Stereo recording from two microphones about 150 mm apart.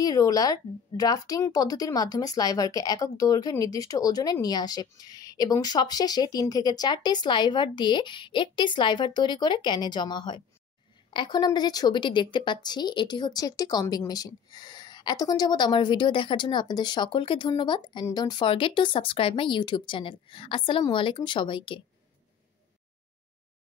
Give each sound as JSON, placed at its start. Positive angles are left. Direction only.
{"t": 0.0, "sound": "speech", "side_deg": 25}